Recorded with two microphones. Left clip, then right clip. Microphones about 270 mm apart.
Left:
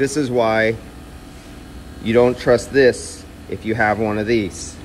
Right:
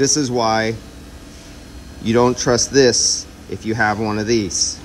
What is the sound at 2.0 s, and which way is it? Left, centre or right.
Speech, centre.